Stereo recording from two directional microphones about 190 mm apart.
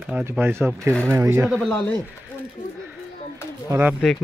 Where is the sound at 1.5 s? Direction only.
5° left (ahead or behind).